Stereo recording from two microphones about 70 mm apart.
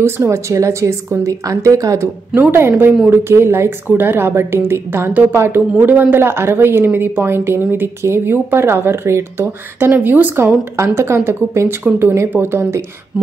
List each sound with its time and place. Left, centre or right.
0.0 s a woman's voice: right
3.1 s a woman's voice: right
10.3 s a woman's voice: right